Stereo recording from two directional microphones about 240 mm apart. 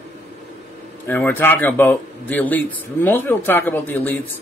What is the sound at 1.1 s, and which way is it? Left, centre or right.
A man's voice, centre.